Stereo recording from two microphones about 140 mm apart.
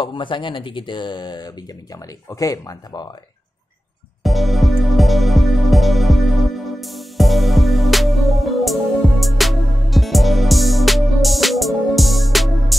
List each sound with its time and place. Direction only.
0.0 s speech: 35° left (ahead or behind)
4.2 s music: centre (ahead or behind)